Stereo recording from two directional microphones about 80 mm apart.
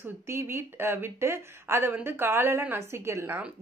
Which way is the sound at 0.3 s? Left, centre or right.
Right.